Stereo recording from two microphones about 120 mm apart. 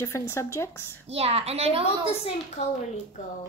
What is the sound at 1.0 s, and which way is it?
Speech, 60° right (ahead or behind).